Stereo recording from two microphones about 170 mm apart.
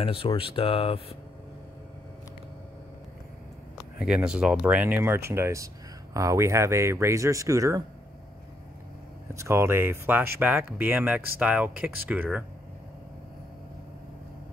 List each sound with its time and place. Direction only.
0.0 s speech: 30° left (ahead or behind)
4.0 s speech: 5° right (ahead or behind); by 7.8 s 20° right (ahead or behind)
9.3 s speech: 15° right (ahead or behind)